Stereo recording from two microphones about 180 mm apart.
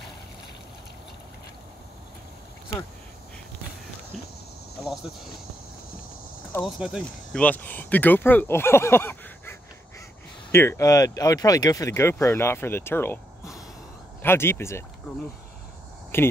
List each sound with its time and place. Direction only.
6.6 s speech: centre (ahead or behind)
14.2 s speech: 15° left (ahead or behind)
16.1 s speech: 15° left (ahead or behind)